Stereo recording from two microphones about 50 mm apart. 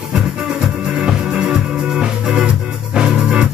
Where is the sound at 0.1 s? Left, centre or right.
Centre.